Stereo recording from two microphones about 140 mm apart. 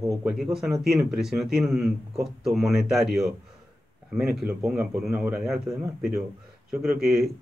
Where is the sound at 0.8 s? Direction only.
5° right (ahead or behind).